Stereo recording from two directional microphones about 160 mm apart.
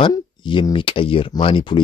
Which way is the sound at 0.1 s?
30° left (ahead or behind).